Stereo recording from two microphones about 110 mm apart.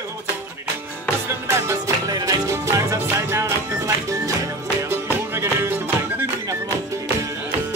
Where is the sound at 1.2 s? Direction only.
30° right (ahead or behind).